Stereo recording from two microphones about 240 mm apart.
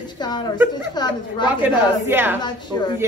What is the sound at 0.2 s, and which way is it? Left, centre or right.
A woman's voice, centre.